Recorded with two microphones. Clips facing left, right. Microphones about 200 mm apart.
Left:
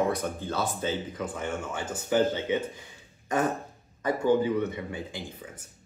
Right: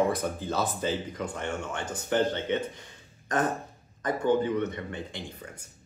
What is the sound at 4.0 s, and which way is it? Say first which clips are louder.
Speech: left 1 dB; 10° left (ahead or behind).